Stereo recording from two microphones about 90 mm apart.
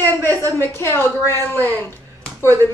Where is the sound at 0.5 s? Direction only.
30° left (ahead or behind).